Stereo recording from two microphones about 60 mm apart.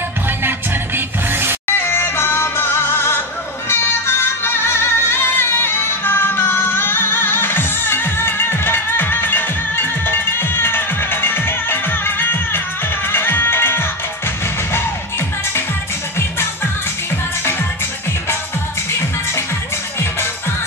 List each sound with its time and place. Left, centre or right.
0.4 s music: right
1.7 s music: left
17.1 s music: left